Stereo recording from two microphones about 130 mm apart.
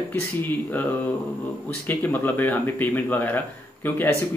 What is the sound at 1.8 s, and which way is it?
Speech, 15° left (ahead or behind).